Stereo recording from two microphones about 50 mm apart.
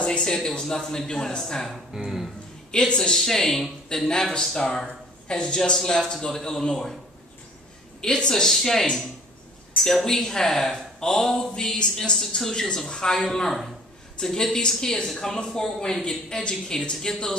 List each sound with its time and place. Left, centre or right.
0.0 s speech: centre
2.0 s speech: centre
2.7 s speech: centre
8.0 s speech: centre